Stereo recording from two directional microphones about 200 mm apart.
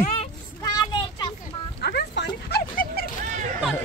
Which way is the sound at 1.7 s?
55° left (ahead or behind).